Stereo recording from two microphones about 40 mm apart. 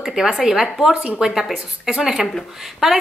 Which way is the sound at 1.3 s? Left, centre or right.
Centre.